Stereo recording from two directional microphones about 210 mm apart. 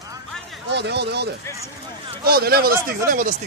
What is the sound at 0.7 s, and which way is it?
Speech, 55° right (ahead or behind).